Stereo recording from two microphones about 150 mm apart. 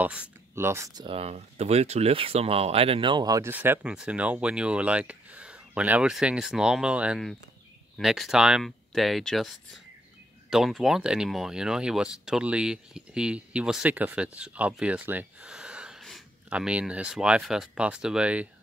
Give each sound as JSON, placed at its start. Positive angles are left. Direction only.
{"t": 0.0, "sound": "speech", "side_deg": -10}
{"t": 1.0, "sound": "speech", "side_deg": -40}
{"t": 3.4, "sound": "speech", "side_deg": -15}
{"t": 10.5, "sound": "speech", "side_deg": 0}